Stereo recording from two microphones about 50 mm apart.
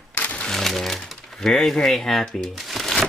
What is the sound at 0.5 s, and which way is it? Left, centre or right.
Music, centre.